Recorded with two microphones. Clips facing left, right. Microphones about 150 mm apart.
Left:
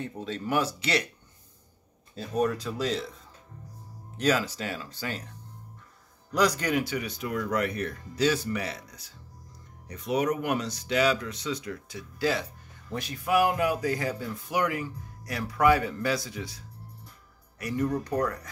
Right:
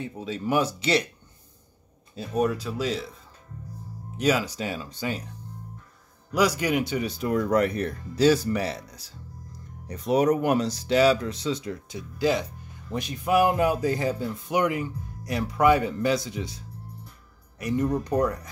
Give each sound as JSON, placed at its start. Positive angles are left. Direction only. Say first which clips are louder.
{"t": 0.0, "sound": "speech", "louder": "right 3 dB", "side_deg": -5}
{"t": 2.1, "sound": "speech", "louder": "right 2 dB", "side_deg": -10}
{"t": 4.2, "sound": "speech", "louder": "right 2 dB", "side_deg": -10}
{"t": 6.3, "sound": "speech", "louder": "right 2 dB", "side_deg": -5}
{"t": 6.8, "sound": "speech", "louder": "right 4 dB", "side_deg": -25}